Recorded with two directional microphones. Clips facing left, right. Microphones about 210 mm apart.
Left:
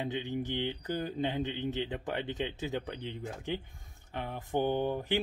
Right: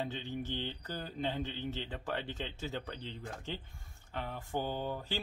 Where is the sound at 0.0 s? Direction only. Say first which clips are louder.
Left 4 dB; 15° left (ahead or behind).